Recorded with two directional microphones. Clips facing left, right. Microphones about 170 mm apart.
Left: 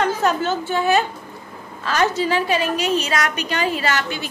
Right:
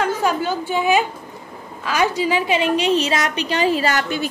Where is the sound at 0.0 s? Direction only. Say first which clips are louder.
Even; 10° right (ahead or behind).